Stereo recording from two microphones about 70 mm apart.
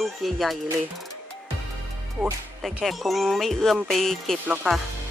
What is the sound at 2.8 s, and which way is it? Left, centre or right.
Speech, centre.